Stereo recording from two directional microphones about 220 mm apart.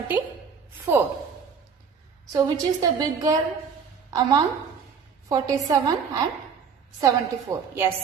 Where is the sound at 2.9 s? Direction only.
15° right (ahead or behind).